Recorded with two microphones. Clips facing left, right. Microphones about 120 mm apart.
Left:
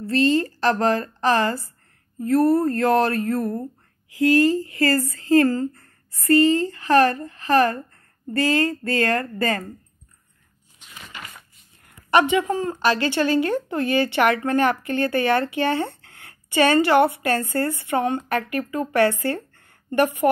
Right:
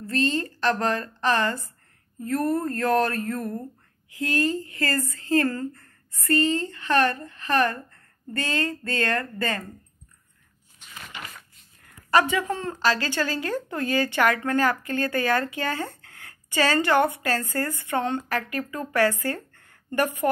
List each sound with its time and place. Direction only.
0.4 s speech: 35° left (ahead or behind)
4.7 s speech: 35° left (ahead or behind)
11.8 s a sound: 20° left (ahead or behind)
12.8 s speech: 20° left (ahead or behind)
16.0 s a sound: 25° left (ahead or behind)
17.2 s a woman's voice: 20° left (ahead or behind)